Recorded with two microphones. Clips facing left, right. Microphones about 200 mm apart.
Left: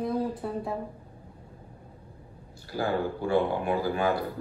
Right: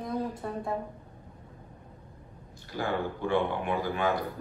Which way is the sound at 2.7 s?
35° left (ahead or behind).